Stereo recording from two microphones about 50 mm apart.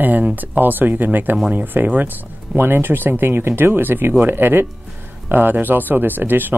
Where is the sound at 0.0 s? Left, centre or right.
Right.